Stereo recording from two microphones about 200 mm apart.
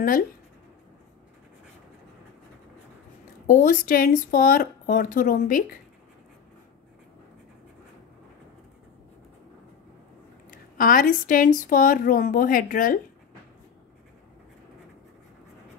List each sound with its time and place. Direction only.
3.4 s speech: 40° left (ahead or behind)
10.8 s speech: 45° left (ahead or behind)